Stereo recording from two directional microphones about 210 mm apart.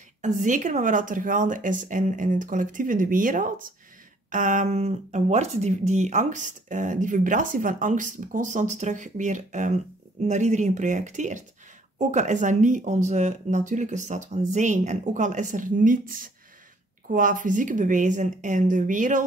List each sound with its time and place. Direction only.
0.2 s speech: 35° right (ahead or behind)